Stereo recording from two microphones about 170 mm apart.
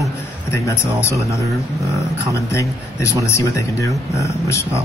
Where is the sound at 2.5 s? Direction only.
15° left (ahead or behind).